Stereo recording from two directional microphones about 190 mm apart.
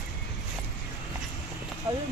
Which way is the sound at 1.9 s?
15° right (ahead or behind).